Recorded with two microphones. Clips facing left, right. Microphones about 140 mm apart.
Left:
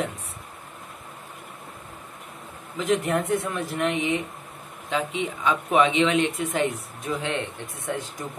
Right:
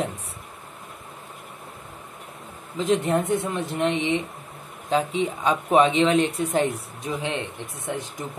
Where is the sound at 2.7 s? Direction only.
25° right (ahead or behind).